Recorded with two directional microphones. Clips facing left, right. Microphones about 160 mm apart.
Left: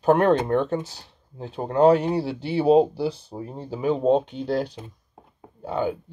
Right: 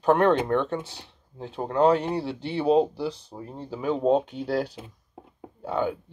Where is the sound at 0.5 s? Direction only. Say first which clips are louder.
Left 2 dB; 40° left (ahead or behind).